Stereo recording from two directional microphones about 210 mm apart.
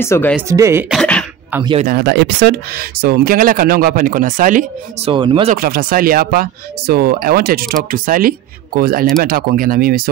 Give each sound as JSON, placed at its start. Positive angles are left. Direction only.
{"t": 0.0, "sound": "speech", "side_deg": 10}
{"t": 0.5, "sound": "speech", "side_deg": -15}
{"t": 0.8, "sound": "throat clearing", "side_deg": 5}
{"t": 1.8, "sound": "speech", "side_deg": -45}
{"t": 5.1, "sound": "speech", "side_deg": -25}
{"t": 5.5, "sound": "speech", "side_deg": -45}